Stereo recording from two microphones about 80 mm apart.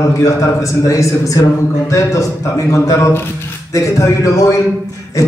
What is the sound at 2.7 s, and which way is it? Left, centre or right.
A man's voice, left.